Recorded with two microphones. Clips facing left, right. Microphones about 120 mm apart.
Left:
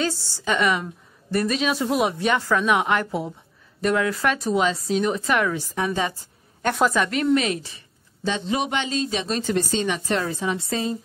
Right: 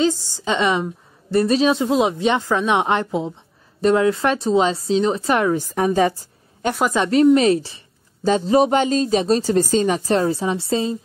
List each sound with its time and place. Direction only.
0.0 s a woman's voice: 15° right (ahead or behind)